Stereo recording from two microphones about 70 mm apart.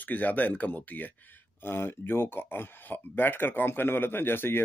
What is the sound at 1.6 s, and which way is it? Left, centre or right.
Speech, left.